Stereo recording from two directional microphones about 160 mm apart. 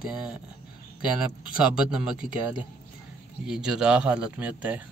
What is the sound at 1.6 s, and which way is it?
Speech, 5° right (ahead or behind).